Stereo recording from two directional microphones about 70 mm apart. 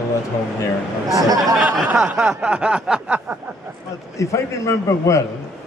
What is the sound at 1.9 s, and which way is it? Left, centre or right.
Snicker, centre.